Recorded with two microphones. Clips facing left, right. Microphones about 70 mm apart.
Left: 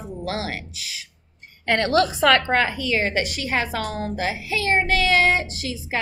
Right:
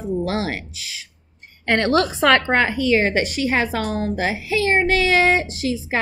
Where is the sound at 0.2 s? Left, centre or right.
Right.